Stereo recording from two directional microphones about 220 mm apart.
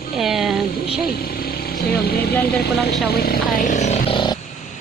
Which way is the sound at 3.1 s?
45° left (ahead or behind).